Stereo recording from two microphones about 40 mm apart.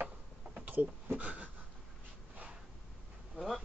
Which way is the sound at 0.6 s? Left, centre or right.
Right.